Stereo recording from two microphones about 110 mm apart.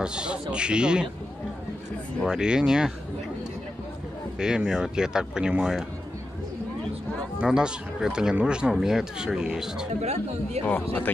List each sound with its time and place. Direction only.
0.0 s speech: 10° right (ahead or behind)
2.2 s speech: 5° right (ahead or behind)
4.4 s speech: 5° right (ahead or behind)
7.3 s speech: 5° right (ahead or behind)
10.0 s speech: 80° right
10.6 s speech: 20° left (ahead or behind)